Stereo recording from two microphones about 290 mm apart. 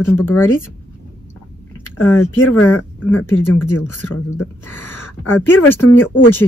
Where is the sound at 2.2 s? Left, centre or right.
Left.